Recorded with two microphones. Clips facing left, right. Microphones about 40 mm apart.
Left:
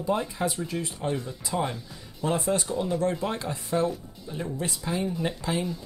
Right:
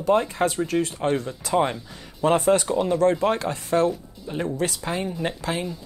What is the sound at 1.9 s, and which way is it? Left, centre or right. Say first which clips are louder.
Speech: right 8 dB; right.